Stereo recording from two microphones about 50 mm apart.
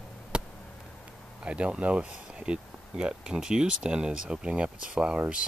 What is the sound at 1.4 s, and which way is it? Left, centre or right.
Speech, right.